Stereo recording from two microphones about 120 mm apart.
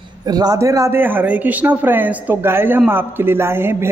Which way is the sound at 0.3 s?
30° right (ahead or behind).